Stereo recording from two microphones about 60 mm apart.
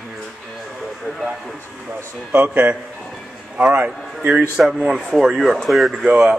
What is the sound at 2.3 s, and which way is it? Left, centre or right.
A man's voice, right.